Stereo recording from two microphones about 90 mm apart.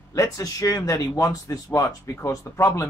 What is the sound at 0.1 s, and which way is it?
Speech, 40° left (ahead or behind).